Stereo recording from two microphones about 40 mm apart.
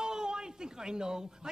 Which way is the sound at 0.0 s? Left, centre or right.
Centre.